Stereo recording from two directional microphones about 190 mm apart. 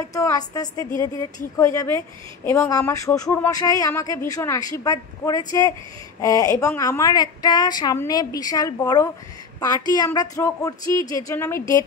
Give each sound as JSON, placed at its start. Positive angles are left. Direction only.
{"t": 0.1, "sound": "a woman's voice", "side_deg": 20}